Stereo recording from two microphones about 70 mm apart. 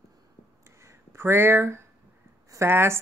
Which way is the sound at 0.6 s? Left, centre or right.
Right.